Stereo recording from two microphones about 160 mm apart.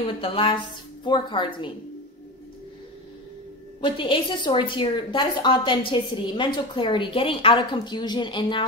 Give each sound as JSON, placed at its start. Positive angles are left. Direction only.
{"t": 0.0, "sound": "a woman's voice", "side_deg": 35}
{"t": 3.8, "sound": "a woman's voice", "side_deg": 30}